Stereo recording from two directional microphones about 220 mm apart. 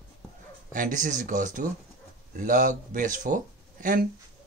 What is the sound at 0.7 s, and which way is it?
Speech, 35° right (ahead or behind).